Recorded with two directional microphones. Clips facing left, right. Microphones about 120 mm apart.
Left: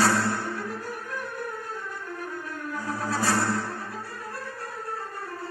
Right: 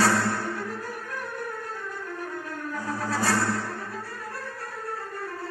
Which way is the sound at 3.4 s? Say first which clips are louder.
Left 1 dB; 40° left (ahead or behind).